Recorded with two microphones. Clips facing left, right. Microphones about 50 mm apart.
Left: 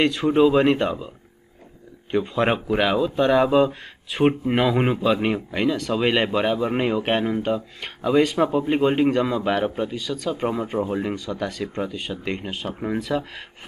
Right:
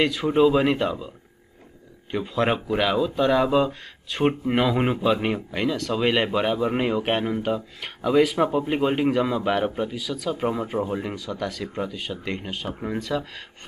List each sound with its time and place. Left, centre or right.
0.0 s speech: centre
2.0 s speech: centre